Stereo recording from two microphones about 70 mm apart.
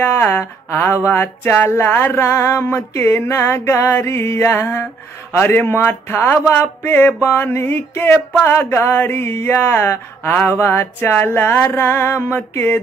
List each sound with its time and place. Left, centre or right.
0.0 s speech: left